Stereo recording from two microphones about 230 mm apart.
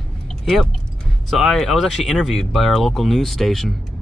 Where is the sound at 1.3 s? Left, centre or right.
Centre.